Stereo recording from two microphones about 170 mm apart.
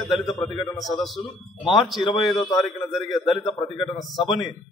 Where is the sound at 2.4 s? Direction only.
20° left (ahead or behind).